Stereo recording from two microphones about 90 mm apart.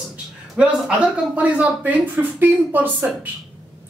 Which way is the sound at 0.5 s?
15° right (ahead or behind).